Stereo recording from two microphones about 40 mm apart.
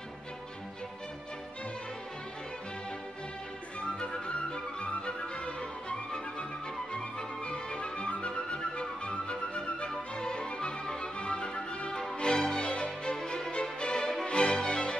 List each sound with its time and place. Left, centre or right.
3.8 s music: left